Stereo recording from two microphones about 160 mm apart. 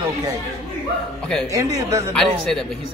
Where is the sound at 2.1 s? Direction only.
5° left (ahead or behind).